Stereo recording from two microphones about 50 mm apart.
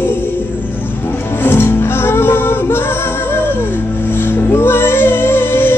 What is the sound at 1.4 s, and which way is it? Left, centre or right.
Music, left.